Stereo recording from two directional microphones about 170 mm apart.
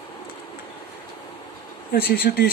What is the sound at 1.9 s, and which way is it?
Speech, 65° left (ahead or behind).